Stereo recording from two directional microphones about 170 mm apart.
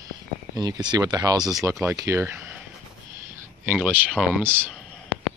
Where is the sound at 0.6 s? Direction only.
25° right (ahead or behind).